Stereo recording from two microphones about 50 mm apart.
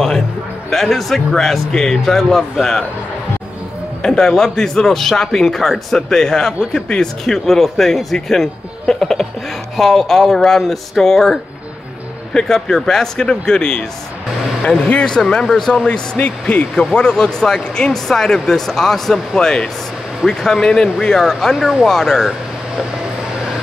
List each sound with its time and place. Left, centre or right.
0.7 s speech: centre
4.0 s a man's voice: centre
12.4 s a man's voice: centre
14.9 s a man's voice: centre
16.2 s speech: left
16.9 s a man's voice: centre